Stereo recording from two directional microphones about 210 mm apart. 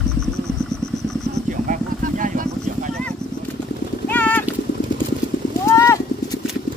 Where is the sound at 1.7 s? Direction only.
40° right (ahead or behind).